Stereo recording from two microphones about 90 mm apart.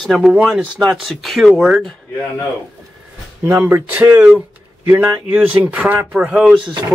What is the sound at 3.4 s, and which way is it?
Speech, 20° right (ahead or behind).